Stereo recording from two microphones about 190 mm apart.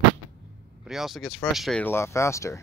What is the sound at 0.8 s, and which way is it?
Speech, centre (ahead or behind).